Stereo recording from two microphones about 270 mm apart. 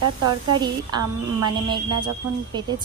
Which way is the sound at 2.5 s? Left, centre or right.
Centre.